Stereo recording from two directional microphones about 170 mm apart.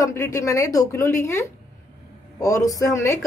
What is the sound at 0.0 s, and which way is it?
Speech, 20° left (ahead or behind).